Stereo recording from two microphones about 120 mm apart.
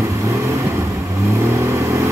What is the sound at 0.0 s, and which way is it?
Vehicle, 25° right (ahead or behind).